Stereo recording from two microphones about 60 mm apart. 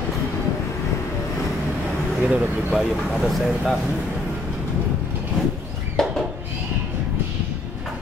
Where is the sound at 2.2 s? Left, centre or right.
Centre.